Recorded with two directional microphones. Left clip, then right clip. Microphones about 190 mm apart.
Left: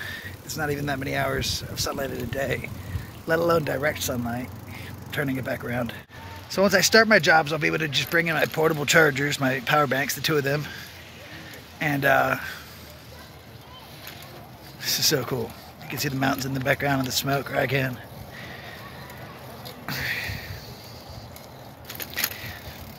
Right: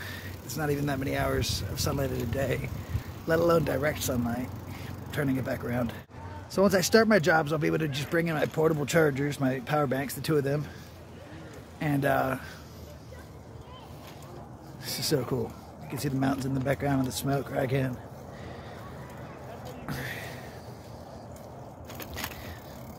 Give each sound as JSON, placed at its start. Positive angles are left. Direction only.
{"t": 0.0, "sound": "speech", "side_deg": -10}
{"t": 6.5, "sound": "speech", "side_deg": -15}
{"t": 11.8, "sound": "speech", "side_deg": -5}
{"t": 14.8, "sound": "speech", "side_deg": -5}
{"t": 15.1, "sound": "speech", "side_deg": 5}
{"t": 19.9, "sound": "a sound", "side_deg": -15}